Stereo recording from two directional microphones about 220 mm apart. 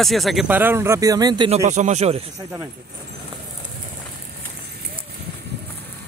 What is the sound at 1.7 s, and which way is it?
Speech, 30° right (ahead or behind).